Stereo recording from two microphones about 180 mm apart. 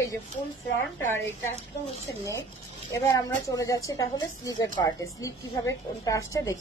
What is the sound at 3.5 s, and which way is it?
A woman's voice, 20° left (ahead or behind).